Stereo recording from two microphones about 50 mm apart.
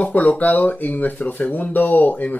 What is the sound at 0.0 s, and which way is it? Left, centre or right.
Speech, left.